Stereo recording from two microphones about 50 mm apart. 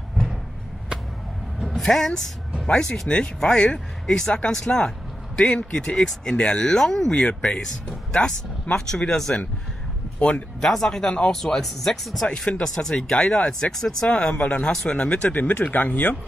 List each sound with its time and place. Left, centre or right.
1.8 s speech: centre
10.1 s speech: left
10.6 s speech: centre
12.3 s speech: left
12.6 s speech: centre; by 16.2 s left